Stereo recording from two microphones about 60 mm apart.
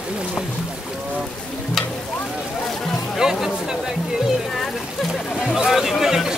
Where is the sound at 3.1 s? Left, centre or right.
Centre.